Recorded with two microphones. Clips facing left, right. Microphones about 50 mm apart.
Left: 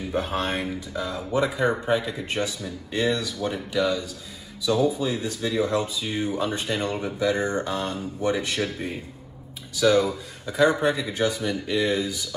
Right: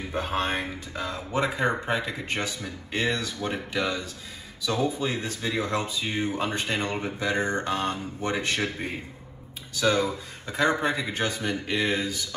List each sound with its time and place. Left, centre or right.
0.1 s speech: right
1.9 s speech: right
2.3 s speech: right